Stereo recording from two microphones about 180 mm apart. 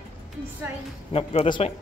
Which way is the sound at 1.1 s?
35° left (ahead or behind).